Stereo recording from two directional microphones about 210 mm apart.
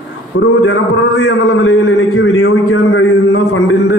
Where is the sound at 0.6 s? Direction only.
65° left (ahead or behind).